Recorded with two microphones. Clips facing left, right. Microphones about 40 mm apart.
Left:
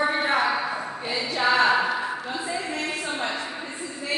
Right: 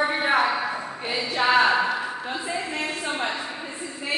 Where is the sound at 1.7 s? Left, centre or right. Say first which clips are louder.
Even; centre.